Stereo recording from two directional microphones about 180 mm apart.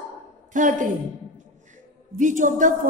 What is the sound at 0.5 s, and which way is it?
Speech, 45° right (ahead or behind).